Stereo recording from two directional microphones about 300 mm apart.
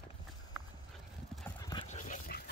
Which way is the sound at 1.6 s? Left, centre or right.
Centre.